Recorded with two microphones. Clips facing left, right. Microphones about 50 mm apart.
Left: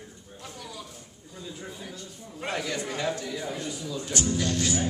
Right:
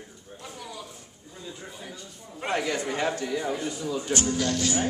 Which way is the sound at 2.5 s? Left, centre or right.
Right.